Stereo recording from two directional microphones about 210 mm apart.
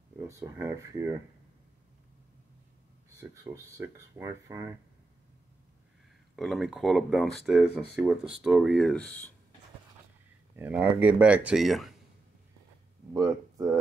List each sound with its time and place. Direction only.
0.2 s speech: 10° right (ahead or behind)
3.2 s speech: 15° right (ahead or behind)
6.3 s speech: centre (ahead or behind)
10.5 s speech: 5° right (ahead or behind)
13.1 s speech: 15° right (ahead or behind)